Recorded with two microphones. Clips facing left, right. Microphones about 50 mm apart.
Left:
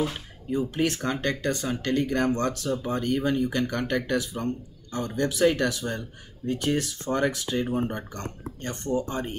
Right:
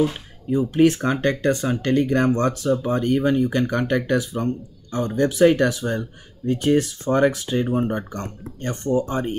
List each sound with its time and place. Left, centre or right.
0.5 s speech: right
7.7 s speech: right